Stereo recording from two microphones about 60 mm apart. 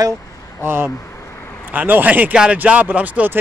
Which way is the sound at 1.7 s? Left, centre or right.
Right.